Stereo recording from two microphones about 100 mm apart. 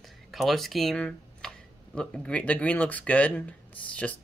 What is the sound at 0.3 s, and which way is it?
Speech, centre (ahead or behind).